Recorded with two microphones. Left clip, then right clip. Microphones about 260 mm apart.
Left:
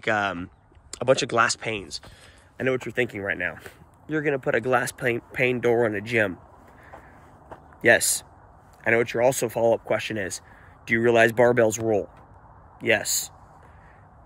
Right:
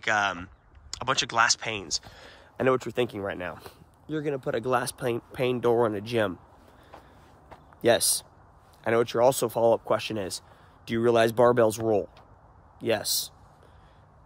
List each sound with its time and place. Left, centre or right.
0.0 s speech: centre
2.2 s speech: right
8.8 s speech: right
12.8 s speech: centre